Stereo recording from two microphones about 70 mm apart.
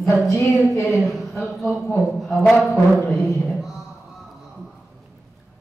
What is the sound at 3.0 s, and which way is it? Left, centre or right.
Speech, centre.